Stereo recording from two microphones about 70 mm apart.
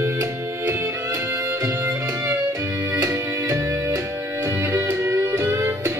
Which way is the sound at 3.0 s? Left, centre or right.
Right.